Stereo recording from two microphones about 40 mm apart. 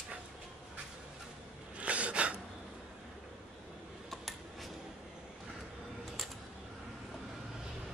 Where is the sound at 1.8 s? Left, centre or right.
Right.